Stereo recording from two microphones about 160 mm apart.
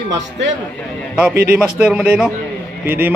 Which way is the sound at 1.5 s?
10° right (ahead or behind).